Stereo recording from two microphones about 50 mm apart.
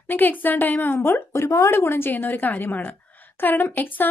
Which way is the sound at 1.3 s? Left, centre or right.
Left.